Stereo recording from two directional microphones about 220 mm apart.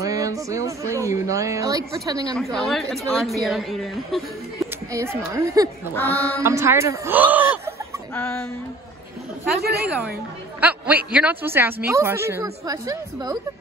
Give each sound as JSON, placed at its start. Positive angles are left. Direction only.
{"t": 0.0, "sound": "a woman's voice", "side_deg": -15}
{"t": 2.5, "sound": "a woman's voice", "side_deg": 0}
{"t": 4.6, "sound": "a woman's voice", "side_deg": -15}
{"t": 8.1, "sound": "a sound", "side_deg": 10}
{"t": 9.6, "sound": "a woman's voice", "side_deg": -45}
{"t": 9.8, "sound": "a woman's voice", "side_deg": -5}